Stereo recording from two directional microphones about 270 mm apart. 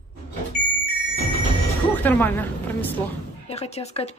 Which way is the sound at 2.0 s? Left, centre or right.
Centre.